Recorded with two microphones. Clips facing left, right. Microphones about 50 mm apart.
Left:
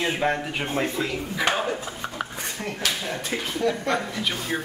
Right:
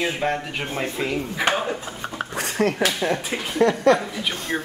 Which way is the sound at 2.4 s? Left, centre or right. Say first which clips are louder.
Right 9 dB; right.